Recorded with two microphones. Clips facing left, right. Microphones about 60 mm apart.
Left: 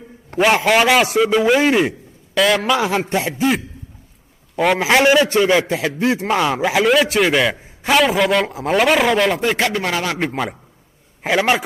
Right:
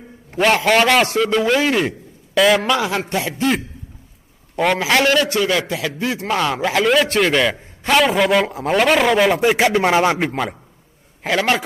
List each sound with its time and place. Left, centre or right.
0.7 s a man's voice: centre
2.3 s a man's voice: centre
3.1 s a man's voice: left
3.3 s a man's voice: centre
4.7 s a man's voice: centre
10.1 s a man's voice: centre
11.2 s a man's voice: centre